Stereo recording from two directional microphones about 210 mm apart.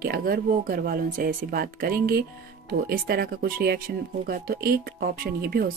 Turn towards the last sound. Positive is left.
turn(degrees=-45)  # may be behind; listen again after turning